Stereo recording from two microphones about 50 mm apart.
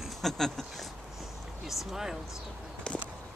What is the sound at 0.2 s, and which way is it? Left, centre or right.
Speech, centre.